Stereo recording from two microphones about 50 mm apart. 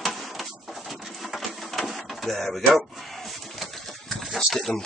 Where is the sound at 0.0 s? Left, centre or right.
Centre.